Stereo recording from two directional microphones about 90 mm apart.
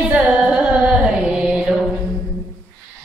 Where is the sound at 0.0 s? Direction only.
10° right (ahead or behind).